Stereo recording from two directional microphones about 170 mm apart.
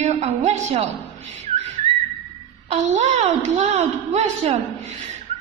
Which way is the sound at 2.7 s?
45° right (ahead or behind).